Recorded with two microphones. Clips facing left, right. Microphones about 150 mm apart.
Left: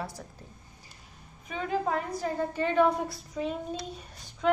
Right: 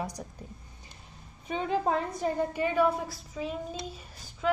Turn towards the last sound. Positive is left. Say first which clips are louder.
# left 2 dB
turn(degrees=0)  # may be behind; listen again after turning